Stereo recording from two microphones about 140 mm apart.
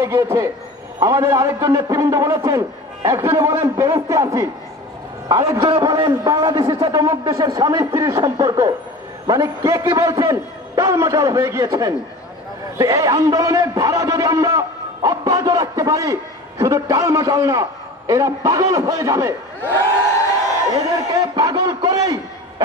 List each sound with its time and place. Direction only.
0.0 s a man's voice: 20° right (ahead or behind)
20.7 s a man's voice: 25° right (ahead or behind)